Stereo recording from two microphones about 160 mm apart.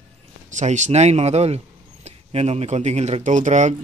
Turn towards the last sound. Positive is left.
turn(degrees=-50)  # may be behind; listen again after turning